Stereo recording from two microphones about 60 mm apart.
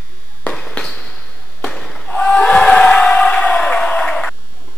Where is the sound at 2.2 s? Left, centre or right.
Centre.